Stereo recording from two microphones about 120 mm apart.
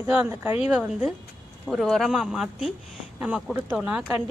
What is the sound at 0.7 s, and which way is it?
Speech, 5° right (ahead or behind).